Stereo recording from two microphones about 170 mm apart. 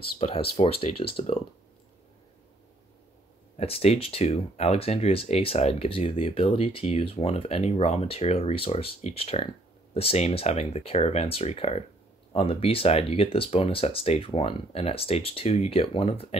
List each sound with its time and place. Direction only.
0.2 s speech: 35° left (ahead or behind)
3.5 s speech: 35° left (ahead or behind)